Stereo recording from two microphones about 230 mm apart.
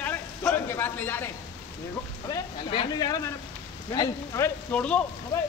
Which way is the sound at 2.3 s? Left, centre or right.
Left.